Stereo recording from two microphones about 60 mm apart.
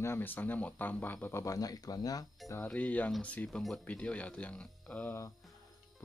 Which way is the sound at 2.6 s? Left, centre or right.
Left.